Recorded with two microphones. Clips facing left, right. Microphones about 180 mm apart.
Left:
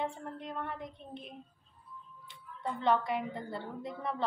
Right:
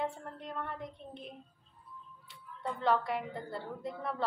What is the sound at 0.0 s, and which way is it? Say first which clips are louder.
A woman's voice: even; centre (ahead or behind).